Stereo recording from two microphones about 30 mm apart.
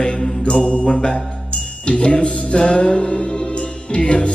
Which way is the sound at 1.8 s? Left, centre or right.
Left.